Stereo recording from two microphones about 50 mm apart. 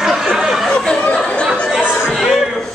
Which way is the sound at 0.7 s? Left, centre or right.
Centre.